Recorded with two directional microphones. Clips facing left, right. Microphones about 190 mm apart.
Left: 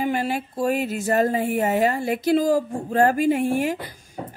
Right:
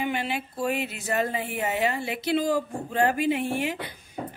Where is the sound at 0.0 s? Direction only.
40° left (ahead or behind).